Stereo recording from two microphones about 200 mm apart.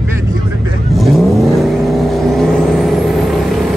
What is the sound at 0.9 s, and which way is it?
Vehicle, centre (ahead or behind).